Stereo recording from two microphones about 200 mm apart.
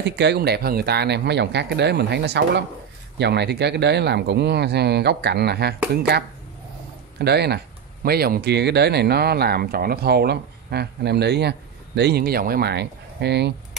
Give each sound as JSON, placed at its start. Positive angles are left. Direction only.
{"t": 0.0, "sound": "speech", "side_deg": -60}